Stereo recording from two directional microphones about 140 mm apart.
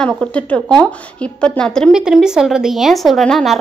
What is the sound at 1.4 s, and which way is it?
Speech, 5° left (ahead or behind).